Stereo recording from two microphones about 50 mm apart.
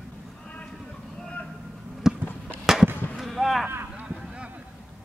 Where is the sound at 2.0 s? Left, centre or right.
Centre.